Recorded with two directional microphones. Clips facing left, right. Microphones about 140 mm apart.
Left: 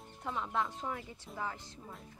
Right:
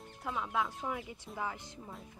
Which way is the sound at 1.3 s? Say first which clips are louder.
Right 1 dB; 15° right (ahead or behind).